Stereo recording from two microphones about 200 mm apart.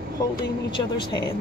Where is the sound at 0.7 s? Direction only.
20° left (ahead or behind).